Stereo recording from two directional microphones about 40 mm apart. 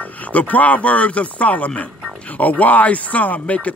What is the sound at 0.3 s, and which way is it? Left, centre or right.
Speech, left.